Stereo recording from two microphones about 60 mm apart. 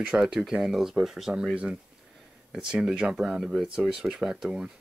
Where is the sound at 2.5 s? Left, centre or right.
Centre.